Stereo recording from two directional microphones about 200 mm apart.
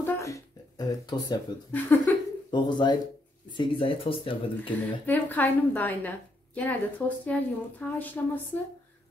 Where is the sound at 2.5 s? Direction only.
20° left (ahead or behind).